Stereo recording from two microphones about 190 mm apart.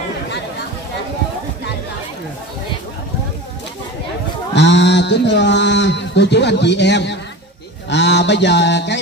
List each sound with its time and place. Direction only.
4.6 s a man's voice: 65° left (ahead or behind)
7.9 s mantra: 65° left (ahead or behind)